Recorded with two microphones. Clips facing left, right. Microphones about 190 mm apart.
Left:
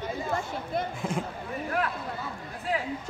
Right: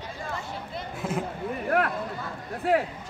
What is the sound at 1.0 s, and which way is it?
Speech, 5° right (ahead or behind).